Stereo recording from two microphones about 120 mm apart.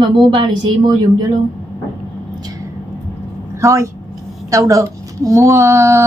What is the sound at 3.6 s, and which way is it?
Speech, 25° right (ahead or behind).